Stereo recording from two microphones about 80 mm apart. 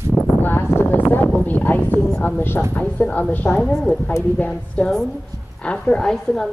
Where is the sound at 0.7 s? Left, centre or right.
Left.